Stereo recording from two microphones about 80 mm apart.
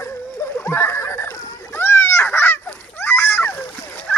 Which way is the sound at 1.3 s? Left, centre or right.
Left.